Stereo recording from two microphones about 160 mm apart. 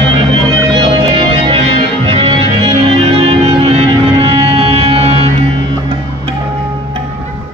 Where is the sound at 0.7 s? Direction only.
35° right (ahead or behind).